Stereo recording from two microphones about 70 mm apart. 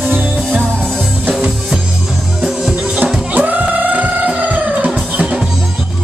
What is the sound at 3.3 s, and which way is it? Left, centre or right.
Music, right.